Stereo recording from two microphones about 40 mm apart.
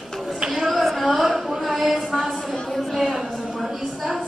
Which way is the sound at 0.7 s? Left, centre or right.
Centre.